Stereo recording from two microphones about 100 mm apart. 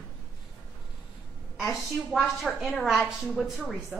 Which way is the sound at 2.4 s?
Centre (ahead or behind).